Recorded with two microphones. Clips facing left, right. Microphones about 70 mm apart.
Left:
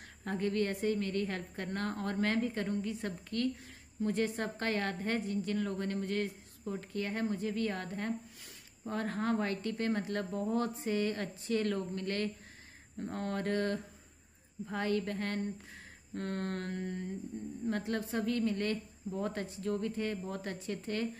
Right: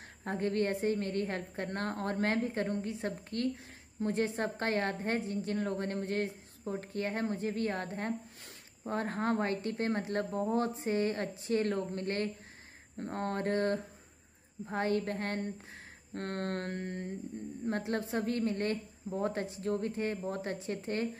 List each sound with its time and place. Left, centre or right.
0.2 s speech: right
16.2 s a sound: right
17.6 s speech: right